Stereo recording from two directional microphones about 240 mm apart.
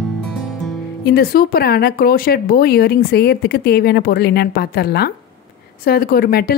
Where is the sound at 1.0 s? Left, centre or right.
Left.